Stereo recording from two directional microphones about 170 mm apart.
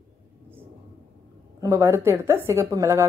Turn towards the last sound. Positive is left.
turn(degrees=-15)  # may be behind; listen again after turning